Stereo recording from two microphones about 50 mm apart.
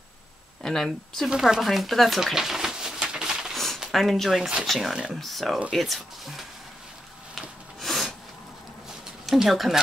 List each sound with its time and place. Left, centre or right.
0.6 s speech: centre
1.3 s speech: centre
3.5 s a sound: centre
3.9 s speech: centre
7.3 s rub: centre
9.2 s speech: centre